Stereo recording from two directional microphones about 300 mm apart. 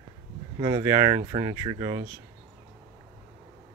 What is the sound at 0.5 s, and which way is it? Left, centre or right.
Speech, centre.